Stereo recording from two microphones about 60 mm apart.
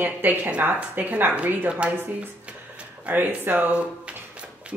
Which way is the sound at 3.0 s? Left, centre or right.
Right.